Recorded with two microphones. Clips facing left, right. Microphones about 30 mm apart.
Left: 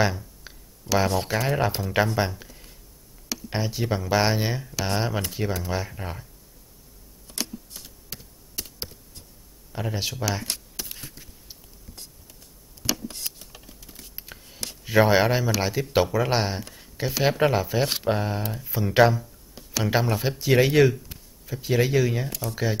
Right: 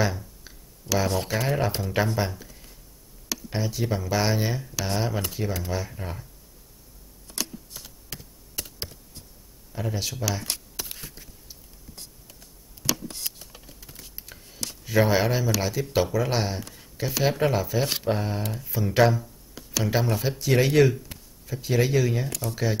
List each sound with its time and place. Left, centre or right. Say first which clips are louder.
0.5 s a sound: left 3 dB; left
0.8 s speech: left 3 dB; centre
1.2 s speech: left 1 dB; centre
3.4 s speech: left 1 dB; left
5.7 s speech: left 1 dB; centre
7.2 s computer keyboard: left 1 dB; centre
9.7 s speech: left 1 dB; centre
10.4 s a sound: even; centre
12.9 s computer keyboard: even; centre
13.7 s typing: even; centre
14.1 s speech: left 1 dB; centre
19.5 s music: left 1 dB; centre
20.0 s speech: left 1 dB; centre